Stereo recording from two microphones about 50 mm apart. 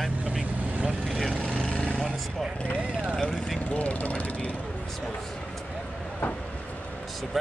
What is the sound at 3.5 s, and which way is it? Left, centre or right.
Speech, left.